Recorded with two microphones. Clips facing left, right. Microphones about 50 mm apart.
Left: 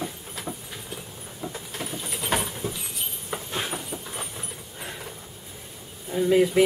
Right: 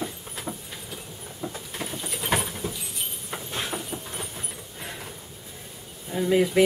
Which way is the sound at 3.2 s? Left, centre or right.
Centre.